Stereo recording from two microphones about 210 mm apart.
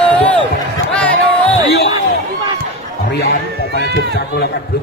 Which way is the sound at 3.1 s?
50° left (ahead or behind).